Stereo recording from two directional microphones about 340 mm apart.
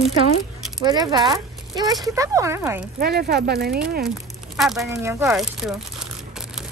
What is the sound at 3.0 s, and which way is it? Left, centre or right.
Speech, right.